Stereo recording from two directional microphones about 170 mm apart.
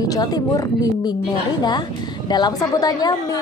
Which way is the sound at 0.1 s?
20° left (ahead or behind).